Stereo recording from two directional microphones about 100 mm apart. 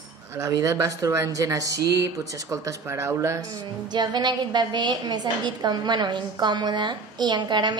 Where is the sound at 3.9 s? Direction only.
45° right (ahead or behind).